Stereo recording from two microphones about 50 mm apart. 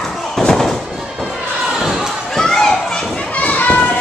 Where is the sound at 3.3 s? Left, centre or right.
Left.